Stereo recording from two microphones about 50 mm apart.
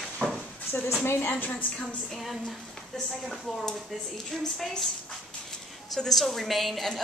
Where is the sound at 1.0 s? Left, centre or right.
Left.